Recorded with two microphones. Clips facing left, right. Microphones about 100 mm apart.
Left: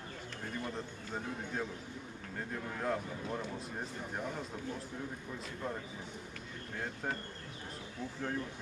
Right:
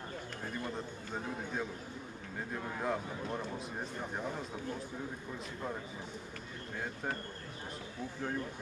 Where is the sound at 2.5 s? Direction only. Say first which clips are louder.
Even; 5° right (ahead or behind).